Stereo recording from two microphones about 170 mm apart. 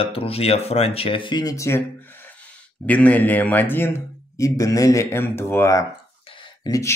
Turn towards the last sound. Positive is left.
turn(degrees=20)  # may be behind; listen again after turning